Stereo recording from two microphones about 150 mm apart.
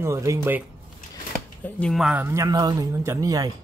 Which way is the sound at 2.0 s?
10° right (ahead or behind).